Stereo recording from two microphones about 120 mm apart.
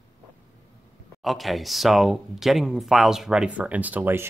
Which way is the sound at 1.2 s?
Centre (ahead or behind).